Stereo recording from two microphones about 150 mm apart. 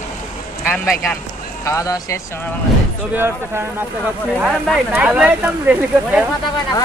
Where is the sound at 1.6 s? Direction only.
20° left (ahead or behind).